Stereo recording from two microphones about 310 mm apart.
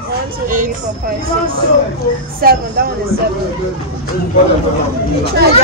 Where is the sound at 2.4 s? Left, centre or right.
Right.